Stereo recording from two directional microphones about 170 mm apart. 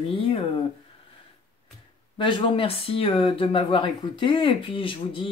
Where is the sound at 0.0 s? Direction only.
30° left (ahead or behind).